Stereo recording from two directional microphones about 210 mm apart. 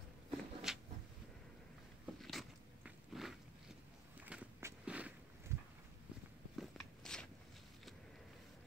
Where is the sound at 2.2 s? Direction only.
Centre (ahead or behind).